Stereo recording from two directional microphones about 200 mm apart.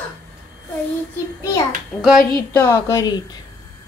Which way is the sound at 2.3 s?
15° left (ahead or behind).